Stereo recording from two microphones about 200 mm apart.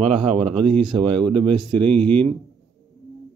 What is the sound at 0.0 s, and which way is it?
Speech, 30° right (ahead or behind).